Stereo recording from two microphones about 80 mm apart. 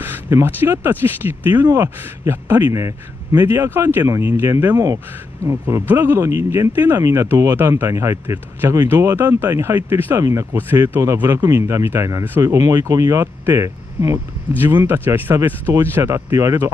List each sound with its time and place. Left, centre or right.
0.0 s a man's voice: right
6.7 s speech: right
7.0 s a man's voice: right
10.1 s a man's voice: right
10.5 s a man's voice: right
14.6 s speech: right
15.7 s a man's voice: right